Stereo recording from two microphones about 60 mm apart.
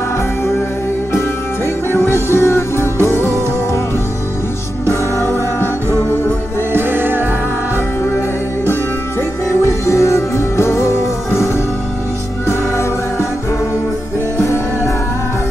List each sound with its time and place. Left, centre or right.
1.9 s music: left
4.8 s music: left
6.7 s music: right
9.6 s music: left
14.4 s music: left